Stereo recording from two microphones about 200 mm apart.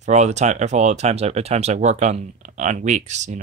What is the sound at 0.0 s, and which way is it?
Speech, 35° right (ahead or behind).